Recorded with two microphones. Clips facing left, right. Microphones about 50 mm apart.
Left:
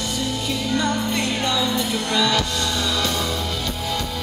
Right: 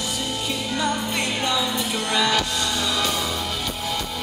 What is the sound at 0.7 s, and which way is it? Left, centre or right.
Music, centre.